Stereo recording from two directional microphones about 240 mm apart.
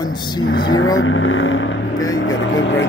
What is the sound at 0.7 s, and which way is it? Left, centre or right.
Speech, left.